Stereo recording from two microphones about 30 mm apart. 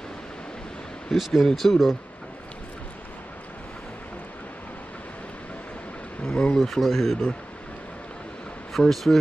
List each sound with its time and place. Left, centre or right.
1.1 s speech: centre
6.2 s speech: left
6.6 s speech: centre
8.7 s speech: centre